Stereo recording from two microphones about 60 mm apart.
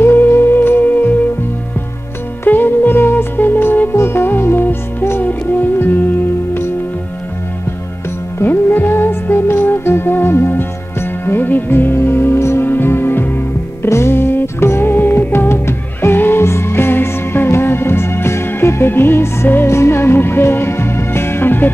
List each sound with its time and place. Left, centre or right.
0.0 s music: left
2.4 s music: left
8.4 s music: left